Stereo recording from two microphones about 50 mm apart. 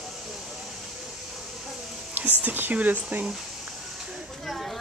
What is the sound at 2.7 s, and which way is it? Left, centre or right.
Speech, right.